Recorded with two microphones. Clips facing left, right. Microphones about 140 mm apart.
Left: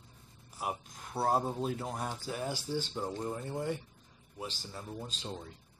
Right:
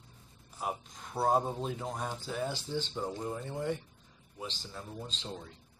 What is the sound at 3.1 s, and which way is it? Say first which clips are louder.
Speech: even; 5° right (ahead or behind).